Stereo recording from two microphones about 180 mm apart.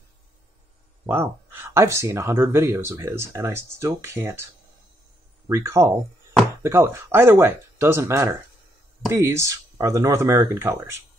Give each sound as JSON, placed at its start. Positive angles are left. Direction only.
{"t": 1.1, "sound": "speech", "side_deg": -15}
{"t": 5.5, "sound": "speech", "side_deg": -15}